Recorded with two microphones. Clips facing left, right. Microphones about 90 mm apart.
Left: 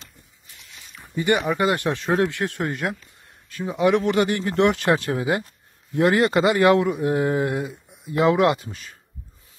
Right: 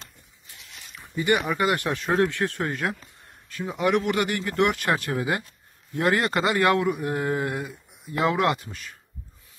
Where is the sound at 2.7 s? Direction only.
5° left (ahead or behind).